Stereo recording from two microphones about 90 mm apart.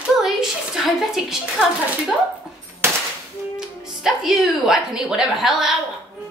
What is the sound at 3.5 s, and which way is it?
Speech, 5° right (ahead or behind).